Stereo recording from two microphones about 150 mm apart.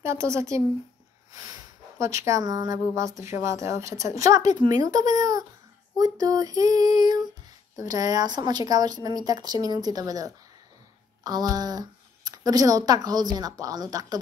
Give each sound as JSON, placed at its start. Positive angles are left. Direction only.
{"t": 0.0, "sound": "speech", "side_deg": -20}